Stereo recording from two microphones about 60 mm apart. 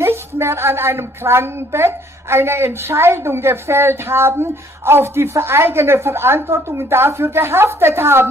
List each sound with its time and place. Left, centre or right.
0.0 s a woman's voice: right